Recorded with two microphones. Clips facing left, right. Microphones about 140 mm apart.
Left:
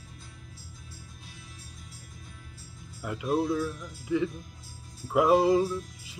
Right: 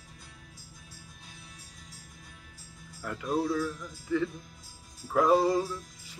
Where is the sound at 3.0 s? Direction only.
15° left (ahead or behind).